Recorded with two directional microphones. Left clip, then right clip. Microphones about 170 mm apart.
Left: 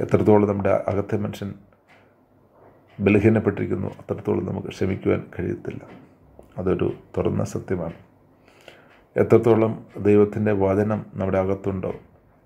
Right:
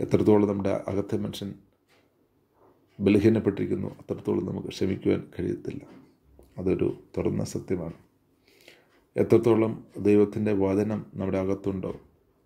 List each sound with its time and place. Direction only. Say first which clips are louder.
0.0 s speech: left 4 dB; 30° right (ahead or behind)
3.0 s speech: left 3 dB; 35° right (ahead or behind)
6.5 s speech: left 3 dB; 30° right (ahead or behind)